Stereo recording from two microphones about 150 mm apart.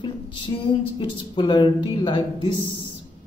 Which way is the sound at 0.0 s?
35° left (ahead or behind).